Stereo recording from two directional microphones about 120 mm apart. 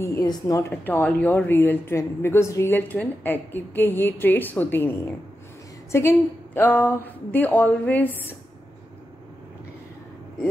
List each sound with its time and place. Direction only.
0.0 s a woman's voice: 25° left (ahead or behind)